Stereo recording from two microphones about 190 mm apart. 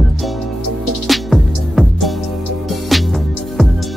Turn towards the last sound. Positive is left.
turn(degrees=0)  # may be behind; listen again after turning